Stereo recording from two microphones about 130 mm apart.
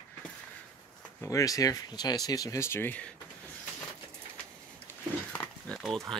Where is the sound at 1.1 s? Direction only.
25° left (ahead or behind).